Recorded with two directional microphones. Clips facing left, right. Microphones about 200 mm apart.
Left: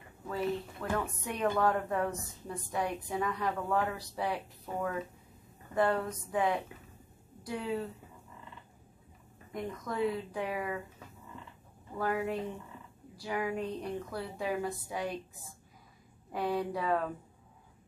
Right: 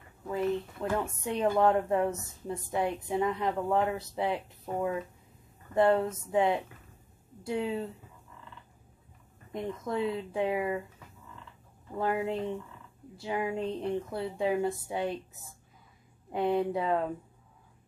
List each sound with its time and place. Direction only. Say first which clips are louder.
0.3 s a woman's voice: right 3 dB; 20° right (ahead or behind)
9.5 s a woman's voice: right 4 dB; 25° right (ahead or behind)
12.0 s a woman's voice: right 2 dB; 25° right (ahead or behind)
16.3 s a woman's voice: right 5 dB; 25° right (ahead or behind)